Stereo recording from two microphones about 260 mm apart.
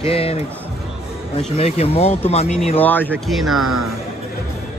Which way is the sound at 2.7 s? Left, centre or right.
Centre.